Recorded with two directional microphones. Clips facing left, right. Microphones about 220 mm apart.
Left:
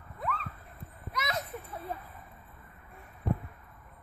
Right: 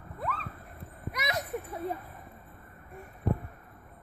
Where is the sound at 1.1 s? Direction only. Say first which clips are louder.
Right 1 dB; 15° right (ahead or behind).